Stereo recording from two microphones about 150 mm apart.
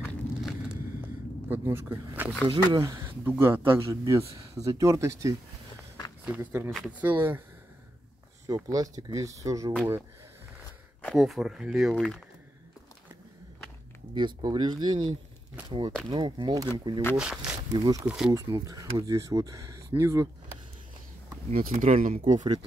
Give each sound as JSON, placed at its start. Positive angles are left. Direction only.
{"t": 0.0, "sound": "a sound", "side_deg": 0}
{"t": 1.5, "sound": "speech", "side_deg": -15}
{"t": 2.4, "sound": "speech", "side_deg": -30}
{"t": 8.6, "sound": "speech", "side_deg": -25}
{"t": 11.1, "sound": "speech", "side_deg": 0}
{"t": 14.1, "sound": "speech", "side_deg": -30}
{"t": 16.1, "sound": "speech", "side_deg": -30}
{"t": 17.2, "sound": "speech", "side_deg": -5}
{"t": 17.7, "sound": "speech", "side_deg": -25}
{"t": 18.0, "sound": "speech", "side_deg": -5}
{"t": 18.3, "sound": "speech", "side_deg": -20}
{"t": 21.5, "sound": "speech", "side_deg": -65}